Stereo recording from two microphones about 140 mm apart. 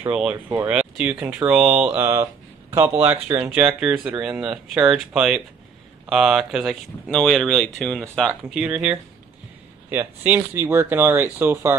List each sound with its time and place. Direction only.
0.1 s speech: 5° right (ahead or behind)
8.5 s speech: 5° right (ahead or behind)